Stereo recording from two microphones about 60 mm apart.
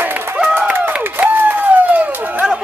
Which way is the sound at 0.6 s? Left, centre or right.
Right.